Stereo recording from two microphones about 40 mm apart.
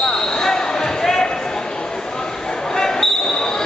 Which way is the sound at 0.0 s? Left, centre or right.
Centre.